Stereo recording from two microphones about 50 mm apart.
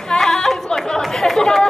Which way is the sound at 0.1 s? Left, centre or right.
Centre.